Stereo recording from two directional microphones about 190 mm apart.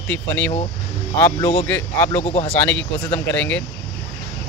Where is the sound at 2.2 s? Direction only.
30° left (ahead or behind).